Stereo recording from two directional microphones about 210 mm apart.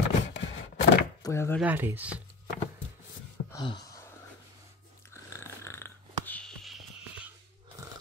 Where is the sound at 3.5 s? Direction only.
20° left (ahead or behind).